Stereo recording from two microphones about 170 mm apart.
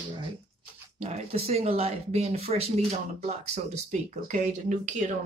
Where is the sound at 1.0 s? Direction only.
35° right (ahead or behind).